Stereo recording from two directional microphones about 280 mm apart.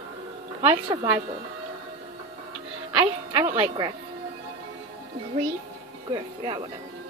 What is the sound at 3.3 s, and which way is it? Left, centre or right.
Speech, centre.